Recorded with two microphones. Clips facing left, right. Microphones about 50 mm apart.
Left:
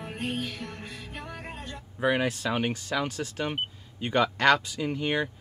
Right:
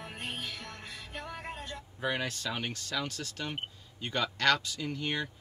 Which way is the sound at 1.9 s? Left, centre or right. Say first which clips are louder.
Left 8 dB; centre.